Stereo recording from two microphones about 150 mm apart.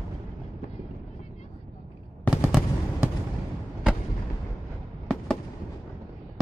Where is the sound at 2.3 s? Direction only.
10° right (ahead or behind).